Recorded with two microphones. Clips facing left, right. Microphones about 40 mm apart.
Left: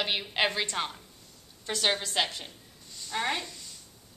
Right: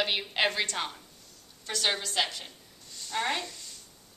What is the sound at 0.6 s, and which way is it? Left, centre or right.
A woman's voice, centre.